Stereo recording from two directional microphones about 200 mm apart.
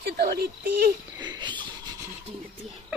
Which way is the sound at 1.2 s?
20° right (ahead or behind).